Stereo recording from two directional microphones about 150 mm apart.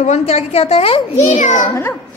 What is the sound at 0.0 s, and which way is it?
A woman's voice, 45° left (ahead or behind).